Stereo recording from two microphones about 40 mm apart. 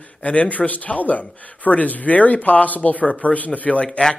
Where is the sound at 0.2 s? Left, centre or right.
Left.